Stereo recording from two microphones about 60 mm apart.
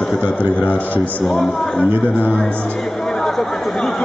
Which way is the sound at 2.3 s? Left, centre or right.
Centre.